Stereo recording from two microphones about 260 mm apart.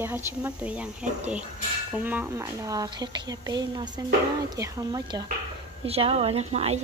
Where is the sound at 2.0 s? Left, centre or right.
Centre.